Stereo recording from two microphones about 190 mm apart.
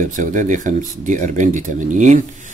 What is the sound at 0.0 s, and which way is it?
Speech, 40° right (ahead or behind).